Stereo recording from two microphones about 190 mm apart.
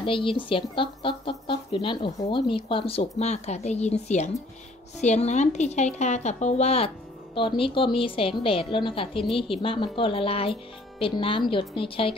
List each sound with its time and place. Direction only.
0.0 s a woman's voice: 25° left (ahead or behind)